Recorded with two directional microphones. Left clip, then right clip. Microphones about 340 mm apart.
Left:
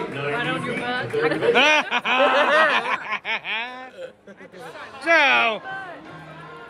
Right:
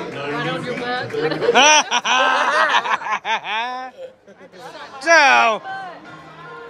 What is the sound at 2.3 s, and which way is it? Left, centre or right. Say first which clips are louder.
Snicker: even; centre.